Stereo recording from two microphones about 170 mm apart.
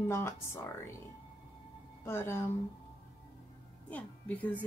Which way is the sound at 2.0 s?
15° left (ahead or behind).